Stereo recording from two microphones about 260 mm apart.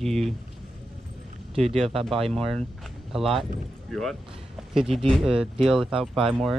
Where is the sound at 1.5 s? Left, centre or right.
Right.